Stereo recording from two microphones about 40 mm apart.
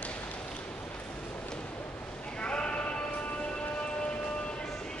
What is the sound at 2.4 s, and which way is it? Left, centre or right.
Bleat, left.